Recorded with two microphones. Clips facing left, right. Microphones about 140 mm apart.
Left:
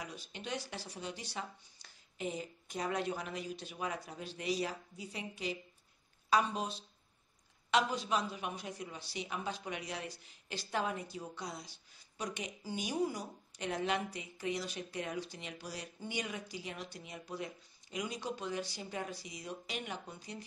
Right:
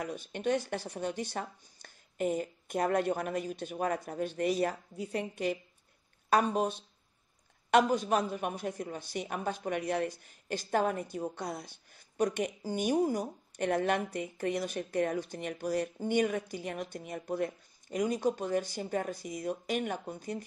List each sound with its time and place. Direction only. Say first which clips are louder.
0.0 s a woman's voice: right 11 dB; 55° right (ahead or behind)